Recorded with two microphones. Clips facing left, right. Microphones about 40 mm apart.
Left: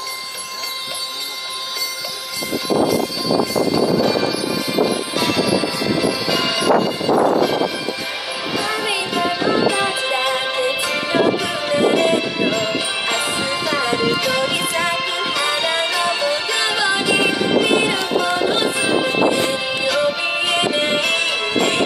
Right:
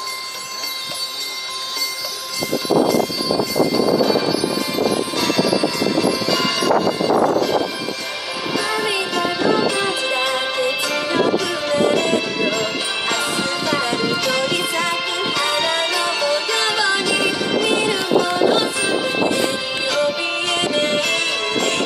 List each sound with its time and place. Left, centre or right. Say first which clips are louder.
5.1 s music: even; centre
8.5 s music: right 1 dB; centre